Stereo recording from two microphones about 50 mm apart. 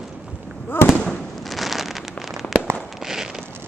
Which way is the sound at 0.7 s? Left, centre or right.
Left.